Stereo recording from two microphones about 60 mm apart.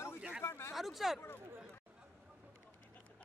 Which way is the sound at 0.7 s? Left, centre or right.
Centre.